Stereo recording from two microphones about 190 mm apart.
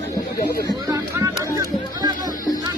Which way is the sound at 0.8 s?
20° right (ahead or behind).